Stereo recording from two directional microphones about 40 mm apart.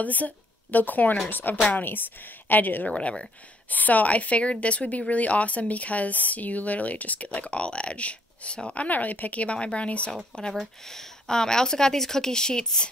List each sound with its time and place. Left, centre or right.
0.0 s a woman's voice: left
2.9 s speech: left
3.7 s speech: left
8.7 s speech: left; by 12.9 s centre